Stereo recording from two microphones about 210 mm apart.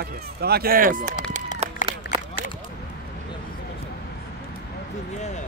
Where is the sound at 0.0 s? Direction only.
50° right (ahead or behind).